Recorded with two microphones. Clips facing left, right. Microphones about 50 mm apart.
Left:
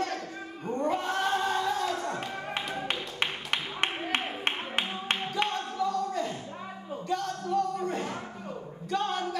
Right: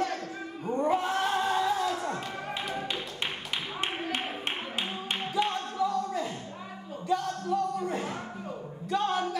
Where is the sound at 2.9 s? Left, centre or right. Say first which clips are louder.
Left 2 dB; left.